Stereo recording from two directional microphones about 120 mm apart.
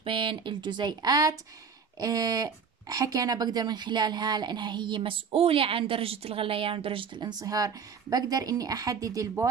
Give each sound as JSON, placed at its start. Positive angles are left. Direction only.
{"t": 0.0, "sound": "speech", "side_deg": -45}